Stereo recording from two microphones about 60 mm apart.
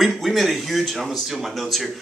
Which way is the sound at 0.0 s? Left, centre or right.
Centre.